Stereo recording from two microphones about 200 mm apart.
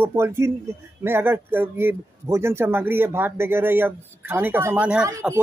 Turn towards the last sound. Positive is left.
turn(degrees=-15)  # may be behind; listen again after turning